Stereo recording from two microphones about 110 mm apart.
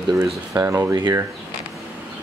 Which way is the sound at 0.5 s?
25° right (ahead or behind).